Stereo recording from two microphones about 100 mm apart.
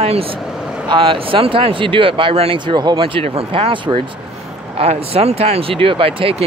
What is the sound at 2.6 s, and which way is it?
Speech, 50° right (ahead or behind).